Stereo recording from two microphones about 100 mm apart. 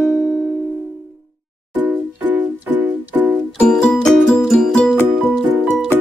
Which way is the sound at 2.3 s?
20° right (ahead or behind).